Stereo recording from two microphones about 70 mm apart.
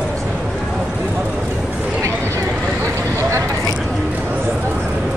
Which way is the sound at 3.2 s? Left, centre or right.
Right.